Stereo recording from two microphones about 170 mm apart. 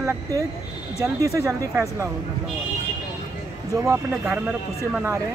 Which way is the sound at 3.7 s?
20° right (ahead or behind).